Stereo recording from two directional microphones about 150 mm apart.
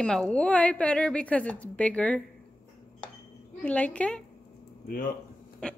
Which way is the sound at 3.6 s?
10° left (ahead or behind).